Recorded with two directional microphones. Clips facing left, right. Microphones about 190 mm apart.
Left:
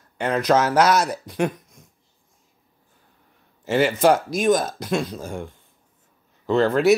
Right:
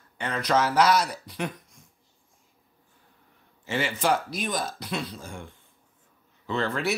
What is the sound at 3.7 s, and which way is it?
A man's voice, 40° left (ahead or behind).